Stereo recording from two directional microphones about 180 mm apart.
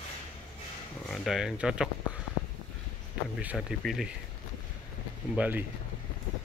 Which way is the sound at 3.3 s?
5° right (ahead or behind).